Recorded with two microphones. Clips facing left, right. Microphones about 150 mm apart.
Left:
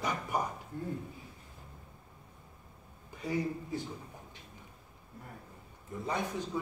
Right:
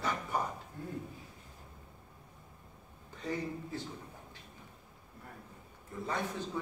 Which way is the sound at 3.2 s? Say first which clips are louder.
Left 3 dB; 10° left (ahead or behind).